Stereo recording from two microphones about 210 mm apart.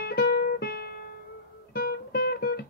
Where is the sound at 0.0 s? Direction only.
45° left (ahead or behind).